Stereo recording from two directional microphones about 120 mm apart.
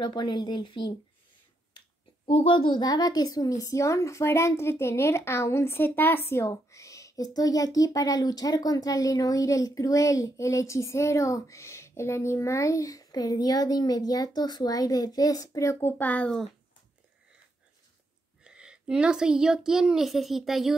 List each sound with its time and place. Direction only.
0.0 s speech: 40° left (ahead or behind)
2.2 s a woman's voice: 50° left (ahead or behind); by 16.4 s 10° left (ahead or behind)
18.4 s a child's voice: 5° right (ahead or behind)